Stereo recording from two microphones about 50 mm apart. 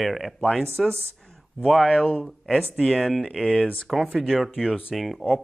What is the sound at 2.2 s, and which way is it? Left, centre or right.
Speech, centre.